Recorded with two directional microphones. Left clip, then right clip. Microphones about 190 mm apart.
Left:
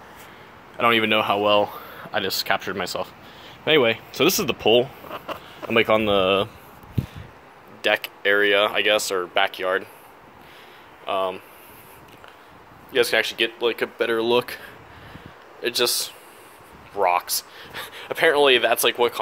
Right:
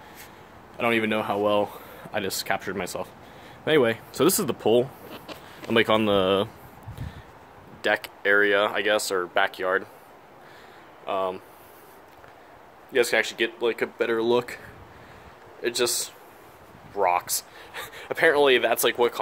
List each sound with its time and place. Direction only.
0.7 s speech: 5° right (ahead or behind)
7.8 s speech: 10° right (ahead or behind)
11.1 s speech: 5° right (ahead or behind)
12.9 s speech: 10° right (ahead or behind)
15.6 s speech: 5° right (ahead or behind)